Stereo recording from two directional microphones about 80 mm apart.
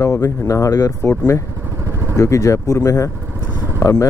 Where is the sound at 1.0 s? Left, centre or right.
Left.